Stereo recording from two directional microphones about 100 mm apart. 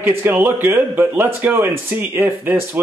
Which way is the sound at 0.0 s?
20° right (ahead or behind).